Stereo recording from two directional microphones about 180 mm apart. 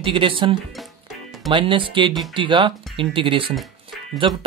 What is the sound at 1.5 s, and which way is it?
Speech, 30° right (ahead or behind).